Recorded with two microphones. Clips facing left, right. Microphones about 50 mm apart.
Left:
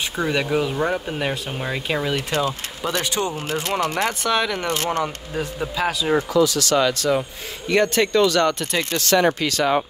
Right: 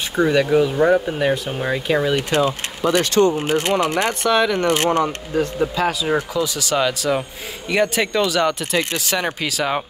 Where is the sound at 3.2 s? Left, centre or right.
Right.